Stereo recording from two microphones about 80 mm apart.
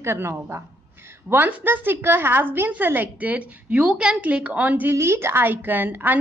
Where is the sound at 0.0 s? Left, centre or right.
Right.